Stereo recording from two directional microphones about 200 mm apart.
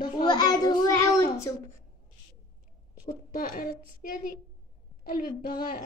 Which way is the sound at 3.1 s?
45° left (ahead or behind).